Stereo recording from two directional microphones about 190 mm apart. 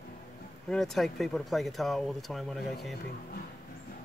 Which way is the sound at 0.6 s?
Centre (ahead or behind).